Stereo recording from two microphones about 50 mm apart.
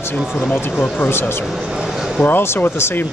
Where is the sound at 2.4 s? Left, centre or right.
Left.